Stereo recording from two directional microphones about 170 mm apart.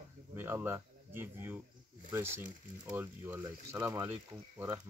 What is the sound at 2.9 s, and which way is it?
Speech, 10° right (ahead or behind).